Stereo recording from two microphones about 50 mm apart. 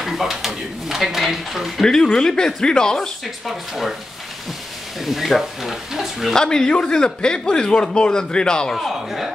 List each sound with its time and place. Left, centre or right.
0.0 s speech: centre
1.8 s a man's voice: centre
3.4 s speech: centre
5.0 s speech: centre
6.3 s a man's voice: centre
8.7 s speech: centre